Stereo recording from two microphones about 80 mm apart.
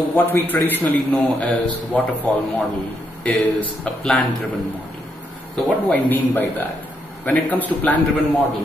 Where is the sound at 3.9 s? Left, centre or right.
Centre.